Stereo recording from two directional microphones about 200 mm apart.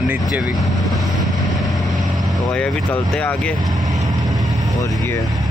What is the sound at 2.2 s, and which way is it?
Speech, 5° left (ahead or behind).